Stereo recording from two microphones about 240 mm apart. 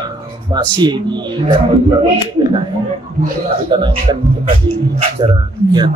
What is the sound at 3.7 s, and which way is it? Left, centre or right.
Speech, centre.